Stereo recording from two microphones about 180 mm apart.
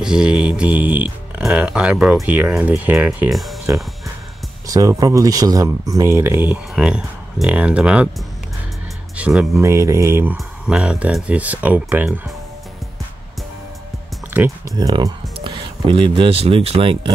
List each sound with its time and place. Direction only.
0.0 s speech: 5° right (ahead or behind)
4.6 s speech: 20° right (ahead or behind)
9.1 s speech: 5° right (ahead or behind)
14.3 s speech: 10° right (ahead or behind)
14.8 s speech: 20° right (ahead or behind)